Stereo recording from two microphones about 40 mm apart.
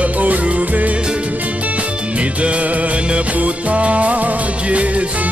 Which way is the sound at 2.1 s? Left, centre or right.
Right.